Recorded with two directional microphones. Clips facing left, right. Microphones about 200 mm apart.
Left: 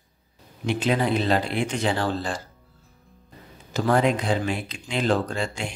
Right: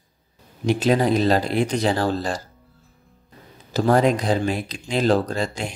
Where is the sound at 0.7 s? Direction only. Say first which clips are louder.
Right 4 dB; 40° right (ahead or behind).